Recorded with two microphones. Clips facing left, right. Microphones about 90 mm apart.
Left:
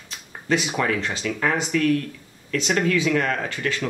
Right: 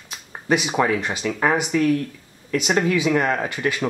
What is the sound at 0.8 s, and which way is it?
Speech, 10° right (ahead or behind).